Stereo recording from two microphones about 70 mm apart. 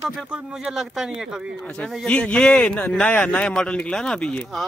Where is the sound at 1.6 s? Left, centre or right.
Centre.